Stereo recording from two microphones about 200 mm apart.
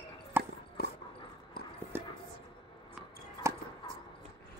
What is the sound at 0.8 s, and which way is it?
Dog, 50° left (ahead or behind).